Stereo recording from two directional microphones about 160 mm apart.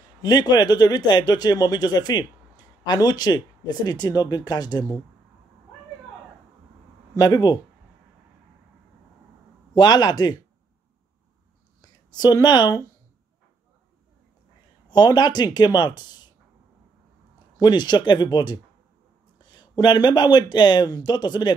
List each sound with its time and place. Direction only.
0.2 s speech: 25° left (ahead or behind)
7.2 s speech: 25° left (ahead or behind)
9.8 s speech: 25° left (ahead or behind)
11.8 s speech: 25° left (ahead or behind)
14.9 s speech: 25° left (ahead or behind)
17.6 s speech: 25° left (ahead or behind)